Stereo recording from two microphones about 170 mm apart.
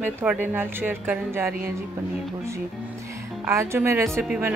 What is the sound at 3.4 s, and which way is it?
Speech, 15° right (ahead or behind).